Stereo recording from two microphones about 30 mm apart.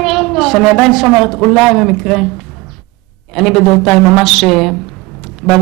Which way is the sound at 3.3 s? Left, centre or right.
Centre.